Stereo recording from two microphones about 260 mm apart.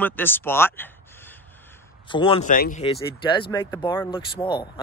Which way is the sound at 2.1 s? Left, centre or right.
Centre.